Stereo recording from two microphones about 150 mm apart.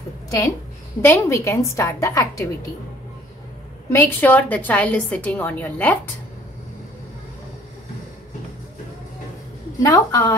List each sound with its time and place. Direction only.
1.0 s a woman's voice: 15° left (ahead or behind)
3.9 s a woman's voice: 10° left (ahead or behind)
9.8 s a woman's voice: 30° left (ahead or behind)